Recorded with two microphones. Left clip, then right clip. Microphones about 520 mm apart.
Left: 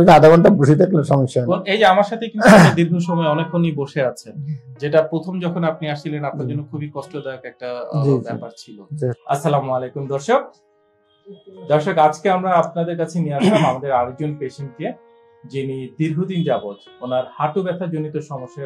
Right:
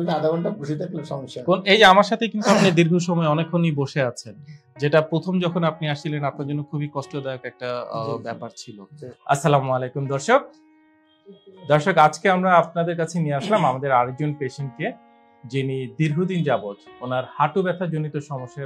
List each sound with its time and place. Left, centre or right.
0.0 s a man's voice: left
1.5 s speech: right
2.7 s speech: right
4.7 s speech: right
11.6 s speech: right
13.4 s speech: left
13.7 s speech: right